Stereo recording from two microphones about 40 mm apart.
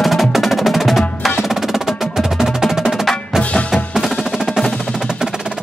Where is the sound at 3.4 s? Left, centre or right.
Left.